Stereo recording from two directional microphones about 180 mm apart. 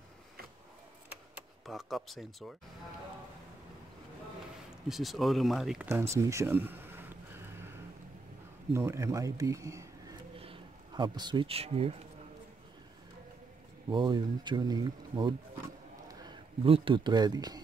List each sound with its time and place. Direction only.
1.3 s speech: centre (ahead or behind)
4.8 s speech: centre (ahead or behind)
5.9 s a sound: 15° right (ahead or behind)
8.7 s speech: 15° right (ahead or behind)
10.3 s a sound: 30° right (ahead or behind)
13.8 s speech: 25° right (ahead or behind)